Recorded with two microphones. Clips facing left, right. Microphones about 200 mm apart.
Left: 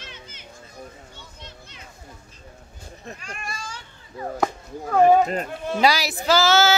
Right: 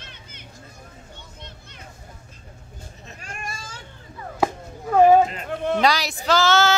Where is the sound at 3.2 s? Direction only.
45° right (ahead or behind).